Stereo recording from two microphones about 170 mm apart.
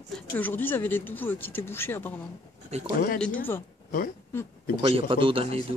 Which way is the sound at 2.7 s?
40° right (ahead or behind).